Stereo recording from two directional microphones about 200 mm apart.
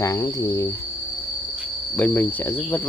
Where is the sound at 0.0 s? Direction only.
15° left (ahead or behind).